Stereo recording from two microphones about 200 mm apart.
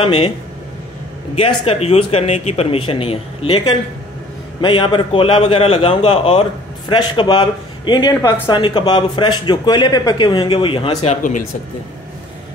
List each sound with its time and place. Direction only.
0.0 s a man's voice: 30° left (ahead or behind)
1.3 s a man's voice: 30° left (ahead or behind)